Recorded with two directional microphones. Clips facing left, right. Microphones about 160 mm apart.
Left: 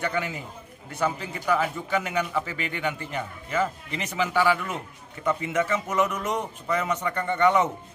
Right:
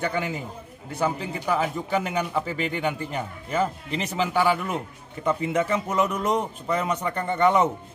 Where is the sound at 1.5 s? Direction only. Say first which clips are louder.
Even; 30° right (ahead or behind).